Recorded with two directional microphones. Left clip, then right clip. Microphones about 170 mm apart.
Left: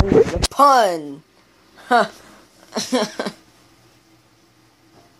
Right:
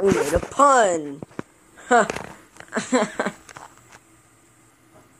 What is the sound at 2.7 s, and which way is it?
Speech, 10° left (ahead or behind).